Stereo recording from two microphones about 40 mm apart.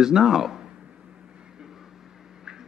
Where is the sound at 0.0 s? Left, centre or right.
Centre.